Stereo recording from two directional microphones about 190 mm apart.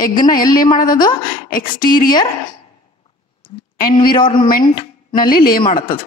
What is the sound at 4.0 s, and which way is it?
Speech, 25° left (ahead or behind).